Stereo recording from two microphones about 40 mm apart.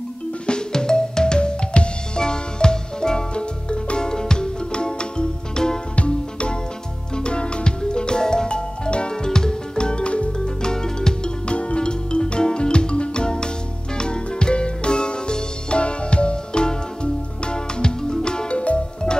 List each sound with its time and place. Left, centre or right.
0.5 s music: centre